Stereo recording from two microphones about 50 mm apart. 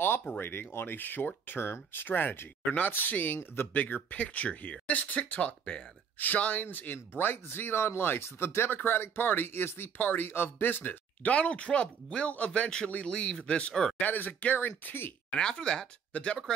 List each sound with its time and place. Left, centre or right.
0.4 s speech: left; by 5.9 s centre
6.1 s speech: left
13.7 s speech: centre
14.0 s speech: left
15.3 s speech: centre
16.1 s speech: left